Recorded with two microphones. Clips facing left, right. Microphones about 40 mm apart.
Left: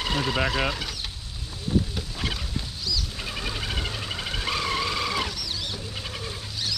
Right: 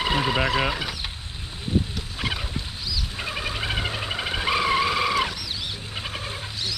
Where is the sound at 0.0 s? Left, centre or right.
Centre.